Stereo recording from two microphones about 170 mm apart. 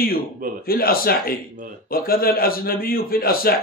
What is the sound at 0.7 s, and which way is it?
Speech, 60° left (ahead or behind).